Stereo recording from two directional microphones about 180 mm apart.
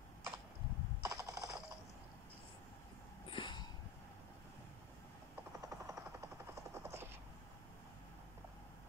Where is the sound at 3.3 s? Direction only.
25° left (ahead or behind).